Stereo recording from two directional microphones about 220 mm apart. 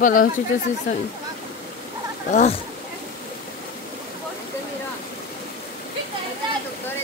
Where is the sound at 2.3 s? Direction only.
35° left (ahead or behind).